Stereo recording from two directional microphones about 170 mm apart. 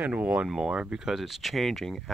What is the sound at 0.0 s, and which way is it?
Speech, 10° right (ahead or behind).